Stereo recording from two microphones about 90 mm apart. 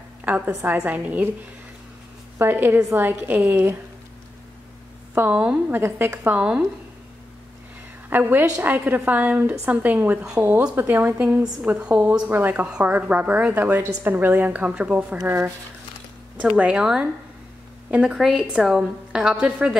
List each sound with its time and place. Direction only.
0.6 s a woman's voice: 20° right (ahead or behind)
2.3 s a woman's voice: 20° right (ahead or behind)
5.1 s a woman's voice: 20° right (ahead or behind)
5.8 s a woman's voice: 30° right (ahead or behind)
8.1 s a woman's voice: 20° right (ahead or behind)
15.1 s a woman's voice: 30° right (ahead or behind)
16.3 s a woman's voice: 15° right (ahead or behind)